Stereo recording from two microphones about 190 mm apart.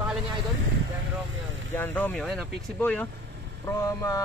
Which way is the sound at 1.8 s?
10° left (ahead or behind).